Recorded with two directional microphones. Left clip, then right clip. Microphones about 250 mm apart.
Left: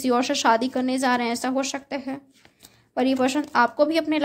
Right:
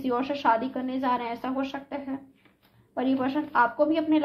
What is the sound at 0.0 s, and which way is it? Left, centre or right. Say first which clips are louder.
Speech: left 5 dB; left.